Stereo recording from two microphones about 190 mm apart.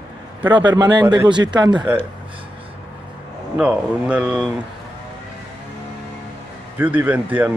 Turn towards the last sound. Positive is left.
turn(degrees=-10)  # may be behind; listen again after turning